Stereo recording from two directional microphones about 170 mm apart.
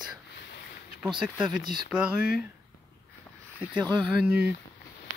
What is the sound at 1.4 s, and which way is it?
Speech, 25° right (ahead or behind).